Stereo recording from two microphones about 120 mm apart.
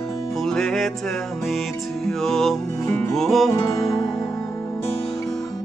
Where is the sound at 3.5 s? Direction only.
30° left (ahead or behind).